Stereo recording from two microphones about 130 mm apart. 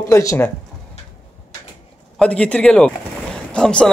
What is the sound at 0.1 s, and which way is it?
Speech, 20° left (ahead or behind).